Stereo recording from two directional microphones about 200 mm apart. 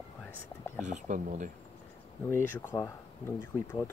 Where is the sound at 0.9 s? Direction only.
40° right (ahead or behind).